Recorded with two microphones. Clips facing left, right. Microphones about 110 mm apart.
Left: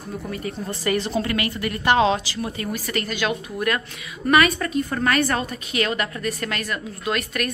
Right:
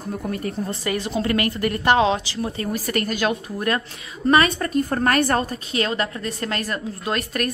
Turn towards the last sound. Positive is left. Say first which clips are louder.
# right 1 dB
turn(degrees=-35)  # may be behind; listen again after turning